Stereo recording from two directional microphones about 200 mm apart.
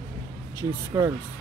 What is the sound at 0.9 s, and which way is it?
Speech, 15° right (ahead or behind).